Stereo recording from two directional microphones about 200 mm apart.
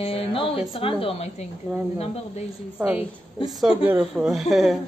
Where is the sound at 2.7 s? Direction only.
5° right (ahead or behind).